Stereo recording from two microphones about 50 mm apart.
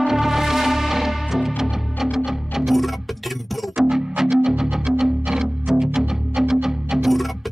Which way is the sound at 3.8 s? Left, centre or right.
Centre.